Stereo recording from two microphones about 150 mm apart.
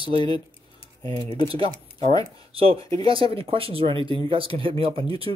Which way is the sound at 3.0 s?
35° right (ahead or behind).